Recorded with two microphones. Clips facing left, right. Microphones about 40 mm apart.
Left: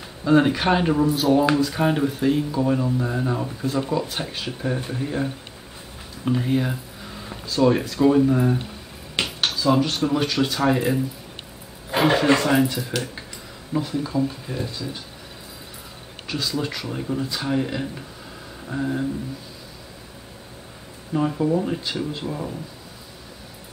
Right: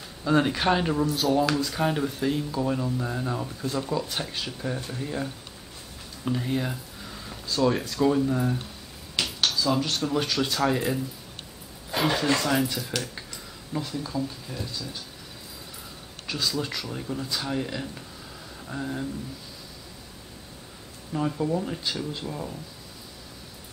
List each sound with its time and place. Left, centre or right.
0.2 s speech: centre
8.2 s speech: left
16.3 s speech: centre
21.1 s speech: centre